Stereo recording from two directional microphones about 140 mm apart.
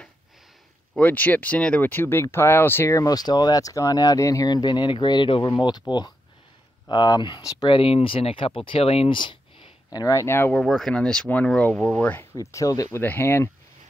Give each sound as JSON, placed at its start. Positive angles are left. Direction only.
{"t": 0.9, "sound": "speech", "side_deg": 10}
{"t": 9.9, "sound": "speech", "side_deg": 25}
{"t": 10.6, "sound": "speech", "side_deg": 5}
{"t": 12.4, "sound": "speech", "side_deg": 25}